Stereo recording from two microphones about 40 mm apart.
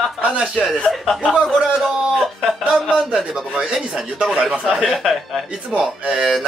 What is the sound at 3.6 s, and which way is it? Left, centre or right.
Speech, right.